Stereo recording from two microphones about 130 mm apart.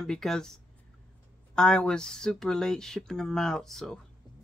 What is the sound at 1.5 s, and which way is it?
Speech, 5° left (ahead or behind).